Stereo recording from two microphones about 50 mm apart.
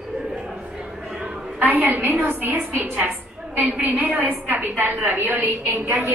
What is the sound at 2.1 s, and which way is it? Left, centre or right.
A woman's voice, right.